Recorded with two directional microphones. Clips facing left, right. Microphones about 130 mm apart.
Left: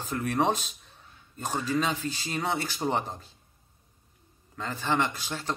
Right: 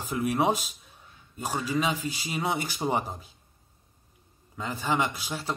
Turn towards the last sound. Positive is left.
turn(degrees=-10)  # may be behind; listen again after turning